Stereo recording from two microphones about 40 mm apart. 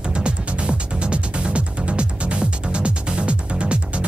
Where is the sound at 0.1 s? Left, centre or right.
Right.